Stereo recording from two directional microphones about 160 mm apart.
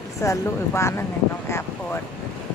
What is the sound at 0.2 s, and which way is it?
Speech, 20° left (ahead or behind).